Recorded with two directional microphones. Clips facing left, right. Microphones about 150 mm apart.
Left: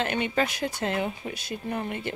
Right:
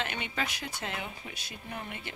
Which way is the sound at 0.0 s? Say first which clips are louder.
Left 9 dB; 45° left (ahead or behind).